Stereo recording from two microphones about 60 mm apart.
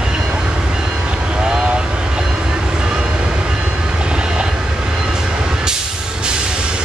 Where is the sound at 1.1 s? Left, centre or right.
Centre.